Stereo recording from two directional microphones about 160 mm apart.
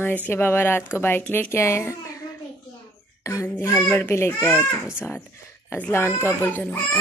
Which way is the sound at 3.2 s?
20° left (ahead or behind).